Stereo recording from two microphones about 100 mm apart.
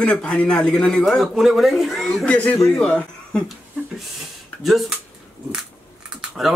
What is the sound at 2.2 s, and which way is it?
A man's voice, 15° left (ahead or behind).